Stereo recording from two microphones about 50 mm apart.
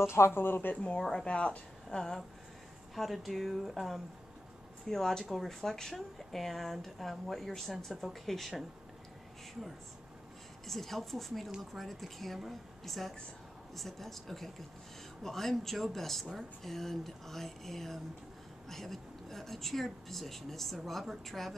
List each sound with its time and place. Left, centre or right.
0.0 s speech: left
1.2 s a woman's voice: left
2.9 s speech: centre
4.8 s a woman's voice: centre
10.7 s speech: centre